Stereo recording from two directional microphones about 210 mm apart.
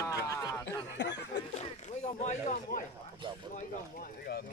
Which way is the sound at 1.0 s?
55° left (ahead or behind).